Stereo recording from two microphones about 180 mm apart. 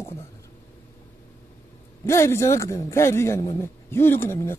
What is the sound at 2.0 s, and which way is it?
Speech, 15° left (ahead or behind).